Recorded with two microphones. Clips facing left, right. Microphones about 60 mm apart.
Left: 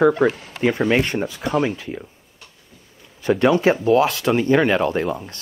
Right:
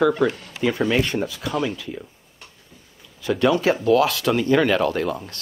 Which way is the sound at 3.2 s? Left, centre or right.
Left.